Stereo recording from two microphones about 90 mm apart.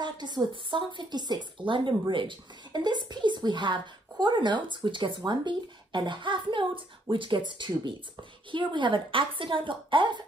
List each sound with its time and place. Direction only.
0.0 s a woman's voice: 55° right (ahead or behind)